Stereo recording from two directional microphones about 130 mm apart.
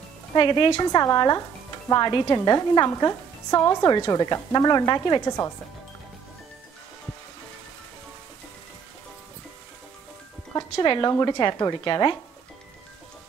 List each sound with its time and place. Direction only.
0.4 s a woman's voice: 40° left (ahead or behind)
10.5 s a woman's voice: 30° left (ahead or behind)